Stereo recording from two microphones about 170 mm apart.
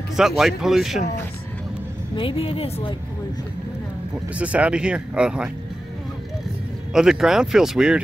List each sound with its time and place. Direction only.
0.1 s speech: centre (ahead or behind)
2.1 s a woman's voice: 35° left (ahead or behind)
4.4 s speech: 10° right (ahead or behind)
6.9 s speech: 5° right (ahead or behind)